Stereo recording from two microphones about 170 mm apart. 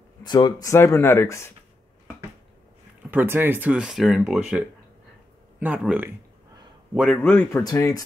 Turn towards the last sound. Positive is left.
turn(degrees=20)  # may be behind; listen again after turning